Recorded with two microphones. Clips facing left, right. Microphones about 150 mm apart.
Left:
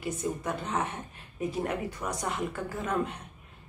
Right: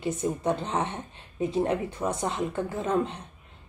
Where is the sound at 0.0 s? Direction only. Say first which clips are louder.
Right 5 dB; 30° right (ahead or behind).